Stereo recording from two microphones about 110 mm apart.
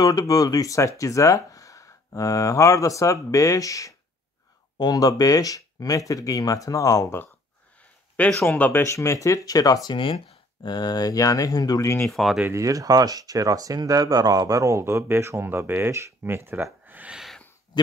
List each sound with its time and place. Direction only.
0.0 s speech: 35° left (ahead or behind)
8.5 s speech: 15° left (ahead or behind)
8.8 s speech: 30° left (ahead or behind)
9.8 s speech: 50° left (ahead or behind)
12.1 s speech: centre (ahead or behind)
12.4 s speech: 30° right (ahead or behind)
16.8 s a sound: 15° right (ahead or behind)